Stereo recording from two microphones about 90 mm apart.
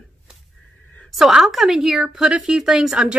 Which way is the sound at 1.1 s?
5° right (ahead or behind).